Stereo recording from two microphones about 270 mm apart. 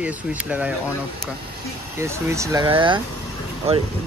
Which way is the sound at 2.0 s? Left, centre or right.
Centre.